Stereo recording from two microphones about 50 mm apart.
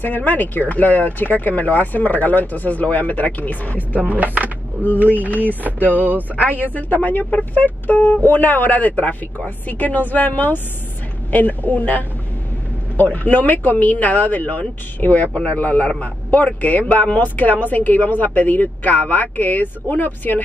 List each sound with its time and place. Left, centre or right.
0.0 s speech: left
4.1 s a sound: right
6.3 s speech: left